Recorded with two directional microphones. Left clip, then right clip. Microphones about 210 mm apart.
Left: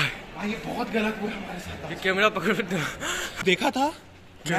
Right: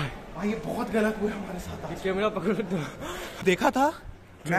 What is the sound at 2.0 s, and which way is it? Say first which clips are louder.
A woman's voice: left 5 dB; 5° right (ahead or behind).